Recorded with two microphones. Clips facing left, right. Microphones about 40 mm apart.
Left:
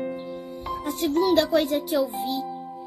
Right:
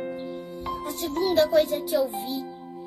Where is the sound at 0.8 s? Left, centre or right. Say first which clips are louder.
Left 5 dB; left.